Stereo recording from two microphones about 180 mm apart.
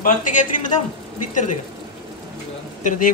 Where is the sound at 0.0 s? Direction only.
45° left (ahead or behind).